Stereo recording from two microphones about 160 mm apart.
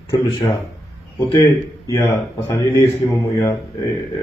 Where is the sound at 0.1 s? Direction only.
20° left (ahead or behind).